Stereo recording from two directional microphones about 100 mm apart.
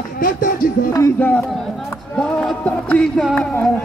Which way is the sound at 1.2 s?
15° left (ahead or behind).